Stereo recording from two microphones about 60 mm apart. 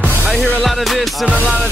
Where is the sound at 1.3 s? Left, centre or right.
Right.